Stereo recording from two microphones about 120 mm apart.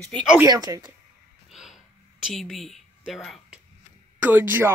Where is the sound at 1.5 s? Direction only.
5° right (ahead or behind).